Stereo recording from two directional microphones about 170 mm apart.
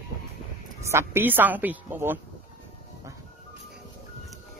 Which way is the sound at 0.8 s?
15° right (ahead or behind).